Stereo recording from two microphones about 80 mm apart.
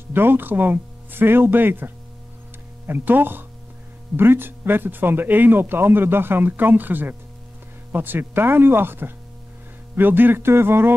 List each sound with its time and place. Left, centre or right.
0.1 s speech: right
2.9 s speech: right